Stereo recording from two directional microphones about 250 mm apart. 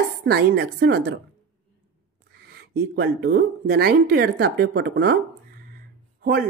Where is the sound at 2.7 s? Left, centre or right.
Right.